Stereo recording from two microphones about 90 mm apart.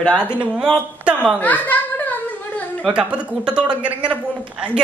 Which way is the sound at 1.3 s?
20° left (ahead or behind).